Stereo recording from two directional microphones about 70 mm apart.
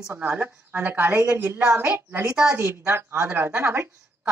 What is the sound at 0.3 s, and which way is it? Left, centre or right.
A woman's voice, right.